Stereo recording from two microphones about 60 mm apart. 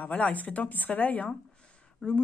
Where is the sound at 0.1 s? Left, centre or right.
Left.